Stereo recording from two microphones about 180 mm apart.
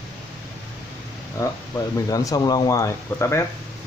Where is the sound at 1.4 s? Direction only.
15° left (ahead or behind).